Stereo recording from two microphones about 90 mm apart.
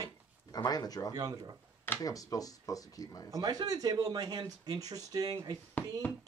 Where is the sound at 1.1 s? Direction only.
45° right (ahead or behind).